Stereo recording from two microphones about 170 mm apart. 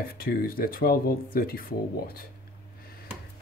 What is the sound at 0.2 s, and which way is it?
Speech, 60° left (ahead or behind).